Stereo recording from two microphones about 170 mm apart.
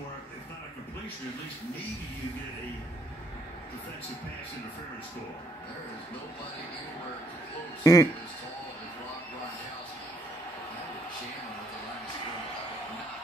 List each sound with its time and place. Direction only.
7.8 s speech: 20° left (ahead or behind)